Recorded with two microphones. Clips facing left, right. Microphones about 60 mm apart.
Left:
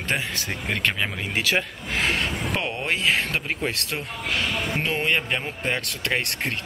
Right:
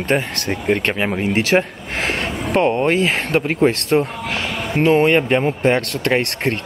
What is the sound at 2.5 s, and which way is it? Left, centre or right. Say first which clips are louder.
Speech: right 15 dB; right.